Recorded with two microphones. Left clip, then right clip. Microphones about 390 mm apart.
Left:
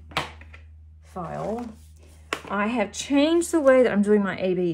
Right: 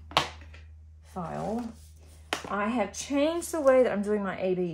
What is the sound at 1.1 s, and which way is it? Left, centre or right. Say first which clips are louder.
Speech: left 3 dB; left.